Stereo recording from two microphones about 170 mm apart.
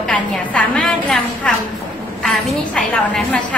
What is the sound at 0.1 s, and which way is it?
A woman's voice, 5° left (ahead or behind).